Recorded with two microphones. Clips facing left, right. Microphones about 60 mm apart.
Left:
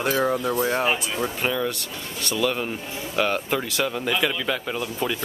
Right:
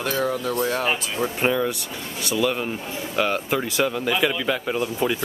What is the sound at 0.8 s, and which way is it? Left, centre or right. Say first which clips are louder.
Speech: even; centre.